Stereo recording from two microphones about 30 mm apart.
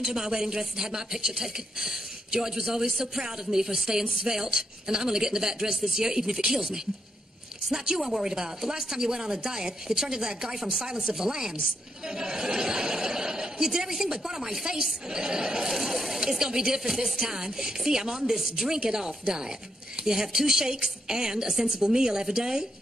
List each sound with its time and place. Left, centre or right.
0.0 s speech: centre
15.7 s speech: centre